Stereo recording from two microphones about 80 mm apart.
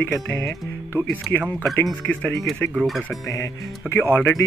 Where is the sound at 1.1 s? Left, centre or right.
Left.